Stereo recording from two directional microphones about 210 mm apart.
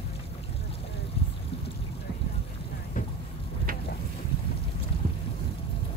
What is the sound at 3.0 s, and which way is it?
Boat, 40° left (ahead or behind).